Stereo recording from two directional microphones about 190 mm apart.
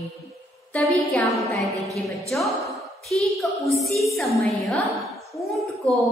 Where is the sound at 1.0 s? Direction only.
Centre (ahead or behind).